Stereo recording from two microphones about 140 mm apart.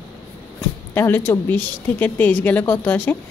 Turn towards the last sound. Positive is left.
turn(degrees=15)  # may be behind; listen again after turning